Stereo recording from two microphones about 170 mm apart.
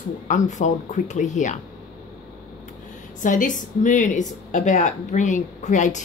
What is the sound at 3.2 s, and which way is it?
Speech, 50° left (ahead or behind).